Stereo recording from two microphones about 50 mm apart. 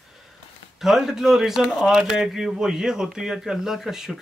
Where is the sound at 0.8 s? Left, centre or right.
Centre.